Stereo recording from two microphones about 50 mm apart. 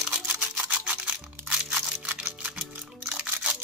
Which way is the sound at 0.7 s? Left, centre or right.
Right.